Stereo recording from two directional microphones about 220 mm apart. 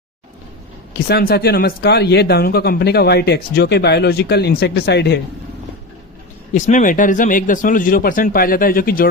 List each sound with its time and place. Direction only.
0.9 s speech: 45° left (ahead or behind)
6.5 s speech: 35° left (ahead or behind)